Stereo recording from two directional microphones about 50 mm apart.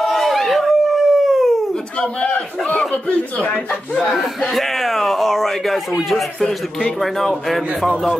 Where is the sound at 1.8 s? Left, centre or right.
Left.